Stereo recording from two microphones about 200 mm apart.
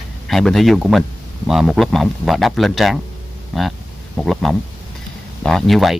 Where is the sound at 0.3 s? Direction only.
Centre (ahead or behind).